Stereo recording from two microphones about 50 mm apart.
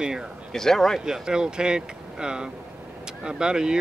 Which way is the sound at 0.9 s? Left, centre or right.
Centre.